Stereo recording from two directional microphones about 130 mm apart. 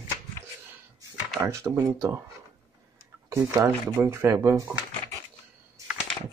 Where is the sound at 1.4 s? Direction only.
25° right (ahead or behind).